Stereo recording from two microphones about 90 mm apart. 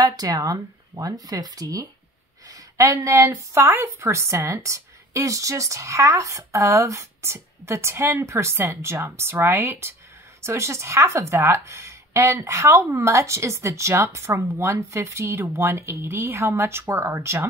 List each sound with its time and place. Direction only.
0.0 s a woman's voice: 45° right (ahead or behind)